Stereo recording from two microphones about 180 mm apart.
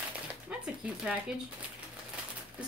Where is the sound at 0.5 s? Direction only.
5° right (ahead or behind).